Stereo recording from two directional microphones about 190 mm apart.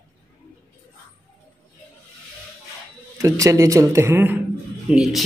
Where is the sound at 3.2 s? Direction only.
15° right (ahead or behind).